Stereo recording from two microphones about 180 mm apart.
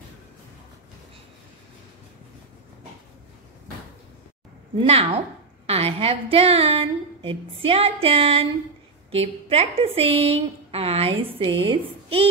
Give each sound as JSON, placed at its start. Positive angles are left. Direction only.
{"t": 4.8, "sound": "a woman's voice", "side_deg": -35}